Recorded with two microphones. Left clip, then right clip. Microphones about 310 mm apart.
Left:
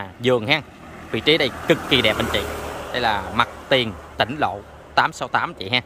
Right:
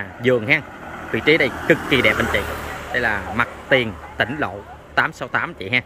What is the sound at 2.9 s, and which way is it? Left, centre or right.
Speech, centre.